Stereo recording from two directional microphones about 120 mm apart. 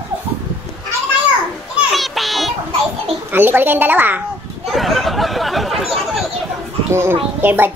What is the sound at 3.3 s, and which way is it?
Speech, 15° right (ahead or behind).